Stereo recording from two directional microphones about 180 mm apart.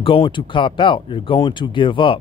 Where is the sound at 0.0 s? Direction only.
30° left (ahead or behind).